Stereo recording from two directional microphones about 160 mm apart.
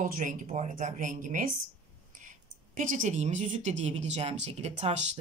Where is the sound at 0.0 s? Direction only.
55° right (ahead or behind).